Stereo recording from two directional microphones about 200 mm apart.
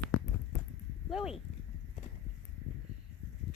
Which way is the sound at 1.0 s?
Centre (ahead or behind).